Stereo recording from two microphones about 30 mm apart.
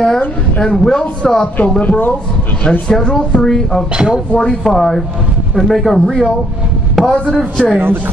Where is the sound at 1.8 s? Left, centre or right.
Left.